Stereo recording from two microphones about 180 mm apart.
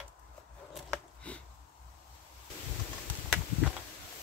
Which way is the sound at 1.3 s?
5° left (ahead or behind).